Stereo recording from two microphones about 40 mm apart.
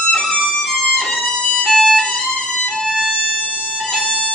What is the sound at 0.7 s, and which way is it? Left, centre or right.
Music, centre.